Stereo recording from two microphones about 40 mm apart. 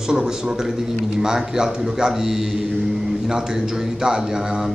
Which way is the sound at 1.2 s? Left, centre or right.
Centre.